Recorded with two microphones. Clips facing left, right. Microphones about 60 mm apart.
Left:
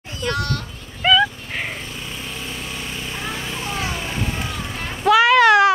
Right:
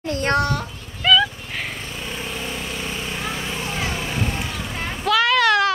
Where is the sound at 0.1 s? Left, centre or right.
Right.